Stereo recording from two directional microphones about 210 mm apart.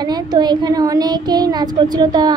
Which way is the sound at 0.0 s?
20° right (ahead or behind).